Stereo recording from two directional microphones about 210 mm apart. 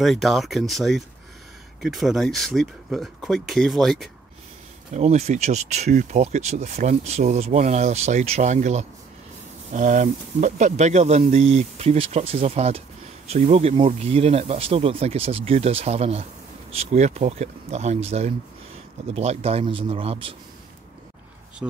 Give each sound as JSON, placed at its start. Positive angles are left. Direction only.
{"t": 0.0, "sound": "speech", "side_deg": 0}
{"t": 4.9, "sound": "speech", "side_deg": -30}